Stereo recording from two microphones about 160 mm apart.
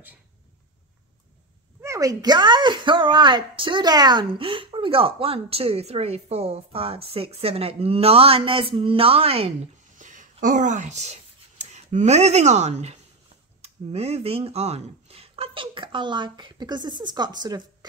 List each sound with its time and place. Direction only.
1.8 s speech: 20° right (ahead or behind); by 9.5 s 35° right (ahead or behind)
9.9 s a sound: 50° right (ahead or behind)
10.4 s speech: 50° right (ahead or behind); by 17.6 s 25° right (ahead or behind)